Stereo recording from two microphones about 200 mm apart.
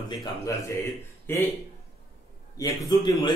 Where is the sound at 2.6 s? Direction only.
20° left (ahead or behind).